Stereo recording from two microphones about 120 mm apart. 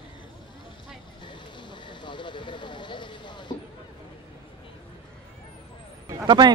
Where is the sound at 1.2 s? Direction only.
40° left (ahead or behind).